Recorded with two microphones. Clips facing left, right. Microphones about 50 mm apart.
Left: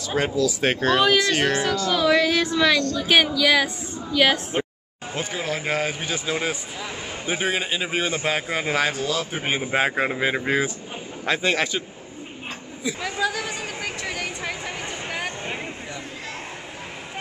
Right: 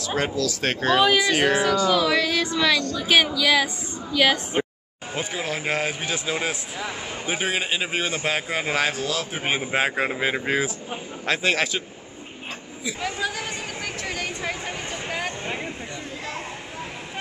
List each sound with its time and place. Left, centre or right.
0.0 s speech: centre
0.4 s speech: centre
0.7 s speech: centre